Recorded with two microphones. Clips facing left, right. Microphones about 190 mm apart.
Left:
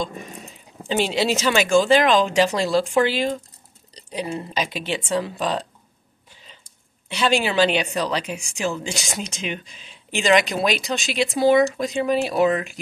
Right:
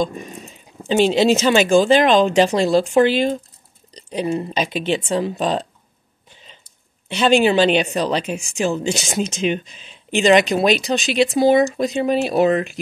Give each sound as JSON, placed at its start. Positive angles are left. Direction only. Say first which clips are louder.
{"t": 0.8, "sound": "a woman's voice", "louder": "right 6 dB", "side_deg": -20}
{"t": 7.1, "sound": "a woman's voice", "louder": "right 6 dB", "side_deg": -25}